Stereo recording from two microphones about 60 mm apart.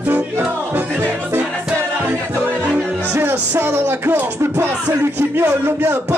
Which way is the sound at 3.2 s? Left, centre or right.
Right.